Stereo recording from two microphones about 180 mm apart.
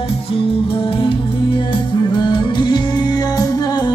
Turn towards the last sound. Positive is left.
turn(degrees=20)  # may be behind; listen again after turning